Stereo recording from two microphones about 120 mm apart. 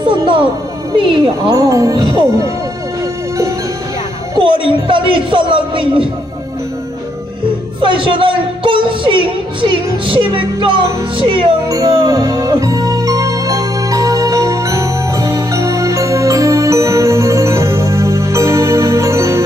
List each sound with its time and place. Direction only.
0.0 s a man's voice: 45° right (ahead or behind)
1.5 s speech: 30° right (ahead or behind)
2.0 s a man's voice: 45° right (ahead or behind)
4.4 s a man's voice: 45° right (ahead or behind)
7.8 s a man's voice: 45° right (ahead or behind)
11.7 s music: 30° right (ahead or behind)